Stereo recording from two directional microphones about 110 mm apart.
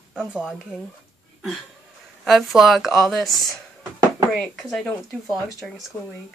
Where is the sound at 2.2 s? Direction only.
Centre (ahead or behind).